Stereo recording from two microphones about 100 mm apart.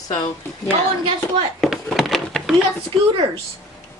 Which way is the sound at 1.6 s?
Centre (ahead or behind).